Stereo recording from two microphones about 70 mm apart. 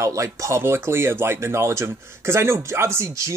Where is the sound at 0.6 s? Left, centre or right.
Right.